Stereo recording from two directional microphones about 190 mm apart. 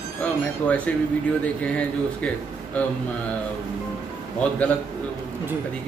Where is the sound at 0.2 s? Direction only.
5° left (ahead or behind).